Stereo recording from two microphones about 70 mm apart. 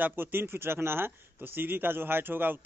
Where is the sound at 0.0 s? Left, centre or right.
Right.